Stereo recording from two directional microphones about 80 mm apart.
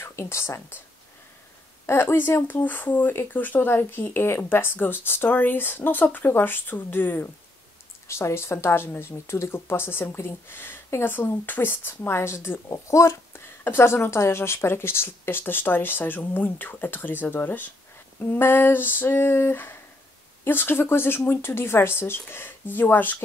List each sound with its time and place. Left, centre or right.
0.0 s speech: left
1.9 s speech: left